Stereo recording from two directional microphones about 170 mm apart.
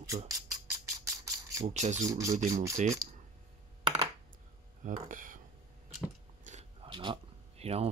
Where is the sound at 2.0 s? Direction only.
20° right (ahead or behind).